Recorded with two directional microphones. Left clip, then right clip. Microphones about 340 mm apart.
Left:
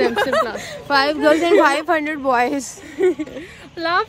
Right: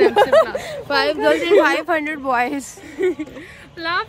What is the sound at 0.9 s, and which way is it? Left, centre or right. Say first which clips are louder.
Speech: left 2 dB; centre.